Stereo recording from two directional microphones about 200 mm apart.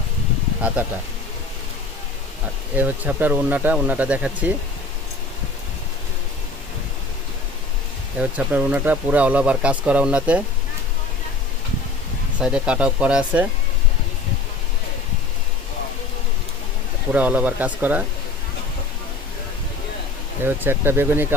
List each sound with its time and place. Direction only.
2.7 s speech: 10° right (ahead or behind)
8.2 s speech: 5° right (ahead or behind)
12.4 s speech: 5° right (ahead or behind)
17.1 s speech: 5° right (ahead or behind)
20.4 s speech: 10° right (ahead or behind)